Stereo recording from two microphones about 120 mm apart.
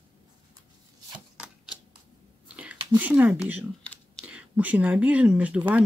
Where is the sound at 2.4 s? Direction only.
10° right (ahead or behind).